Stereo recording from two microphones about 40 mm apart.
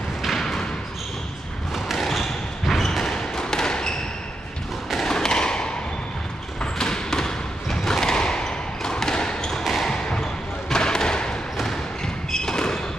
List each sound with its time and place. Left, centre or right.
0.2 s thump: centre
1.9 s a sound: centre
3.1 s a sound: centre
5.0 s tap: centre
6.6 s thump: centre
9.6 s basketball bounce: centre
9.8 s thump: centre